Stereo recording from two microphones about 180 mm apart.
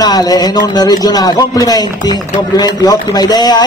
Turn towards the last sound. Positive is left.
turn(degrees=20)  # may be behind; listen again after turning